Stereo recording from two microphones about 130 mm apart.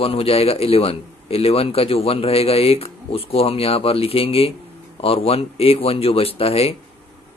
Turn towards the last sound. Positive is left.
turn(degrees=50)  # may be behind; listen again after turning